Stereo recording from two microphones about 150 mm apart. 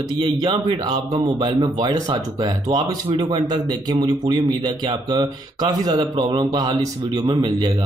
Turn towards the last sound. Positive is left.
turn(degrees=-30)  # may be behind; listen again after turning